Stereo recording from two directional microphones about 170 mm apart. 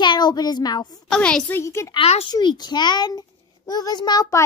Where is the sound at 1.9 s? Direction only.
35° left (ahead or behind).